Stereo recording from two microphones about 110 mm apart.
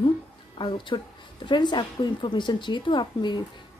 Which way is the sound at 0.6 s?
50° left (ahead or behind).